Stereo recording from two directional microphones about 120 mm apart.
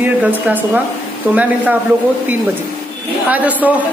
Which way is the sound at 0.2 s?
15° right (ahead or behind).